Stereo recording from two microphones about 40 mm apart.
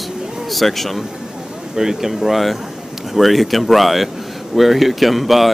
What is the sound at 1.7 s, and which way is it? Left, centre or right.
Speech, centre.